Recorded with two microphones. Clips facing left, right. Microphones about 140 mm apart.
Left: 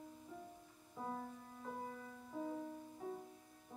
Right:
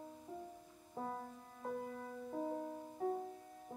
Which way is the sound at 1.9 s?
50° right (ahead or behind).